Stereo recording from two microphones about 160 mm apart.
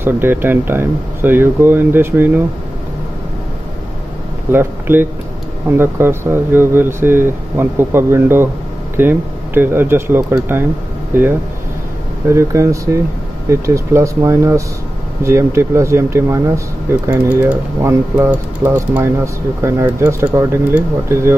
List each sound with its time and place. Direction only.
0.0 s speech: 15° right (ahead or behind)
4.5 s speech: 15° right (ahead or behind)